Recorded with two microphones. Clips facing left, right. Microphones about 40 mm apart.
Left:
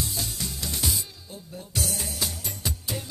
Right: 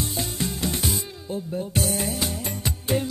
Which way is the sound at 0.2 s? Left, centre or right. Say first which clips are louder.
Right 6 dB; right.